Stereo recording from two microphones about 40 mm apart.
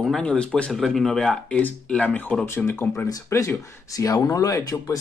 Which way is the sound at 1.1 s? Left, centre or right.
Centre.